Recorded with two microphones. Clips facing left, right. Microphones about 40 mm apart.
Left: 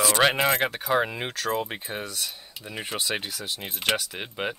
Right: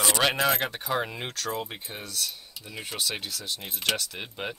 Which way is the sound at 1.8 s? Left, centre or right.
Left.